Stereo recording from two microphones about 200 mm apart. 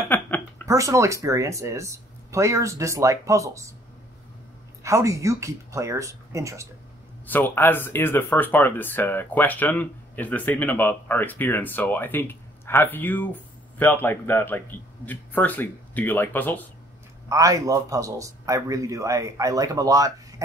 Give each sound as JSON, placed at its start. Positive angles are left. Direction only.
{"t": 0.1, "sound": "a sound", "side_deg": 10}
{"t": 0.7, "sound": "speech", "side_deg": -15}
{"t": 4.8, "sound": "speech", "side_deg": -15}
{"t": 7.2, "sound": "speech", "side_deg": 10}
{"t": 17.3, "sound": "speech", "side_deg": -15}